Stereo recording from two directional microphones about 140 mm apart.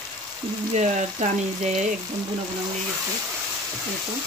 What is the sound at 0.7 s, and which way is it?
Speech, 55° right (ahead or behind).